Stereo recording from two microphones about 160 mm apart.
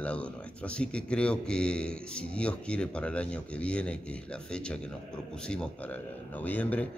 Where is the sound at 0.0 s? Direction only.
10° left (ahead or behind).